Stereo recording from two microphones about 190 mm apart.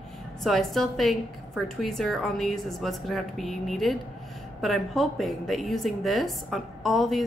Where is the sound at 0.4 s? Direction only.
Centre (ahead or behind).